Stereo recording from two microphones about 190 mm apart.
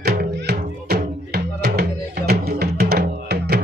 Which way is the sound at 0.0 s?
55° right (ahead or behind).